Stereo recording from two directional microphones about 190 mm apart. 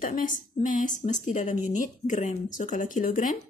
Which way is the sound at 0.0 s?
45° left (ahead or behind).